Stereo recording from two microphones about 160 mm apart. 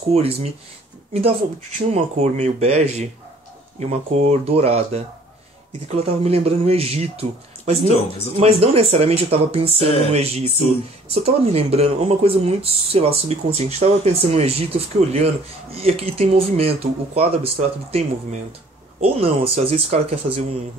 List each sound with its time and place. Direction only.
0.1 s speech: 40° right (ahead or behind)